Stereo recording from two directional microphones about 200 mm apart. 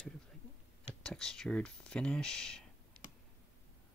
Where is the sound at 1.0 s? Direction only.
5° left (ahead or behind).